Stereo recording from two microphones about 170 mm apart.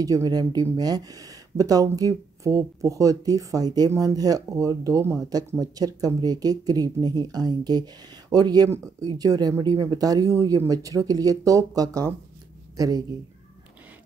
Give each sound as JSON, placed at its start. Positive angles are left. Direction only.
{"t": 0.0, "sound": "speech", "side_deg": -20}